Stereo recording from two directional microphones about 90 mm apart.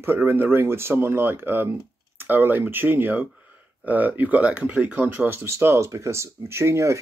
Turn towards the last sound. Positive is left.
turn(degrees=-30)  # may be behind; listen again after turning